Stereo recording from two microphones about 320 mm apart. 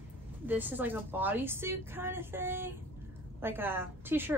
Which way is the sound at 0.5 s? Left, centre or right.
Centre.